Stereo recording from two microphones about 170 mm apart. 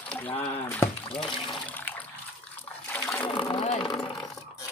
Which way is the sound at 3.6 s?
35° left (ahead or behind).